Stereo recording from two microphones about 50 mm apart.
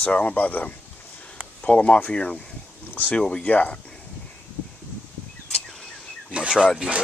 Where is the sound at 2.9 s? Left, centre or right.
Left.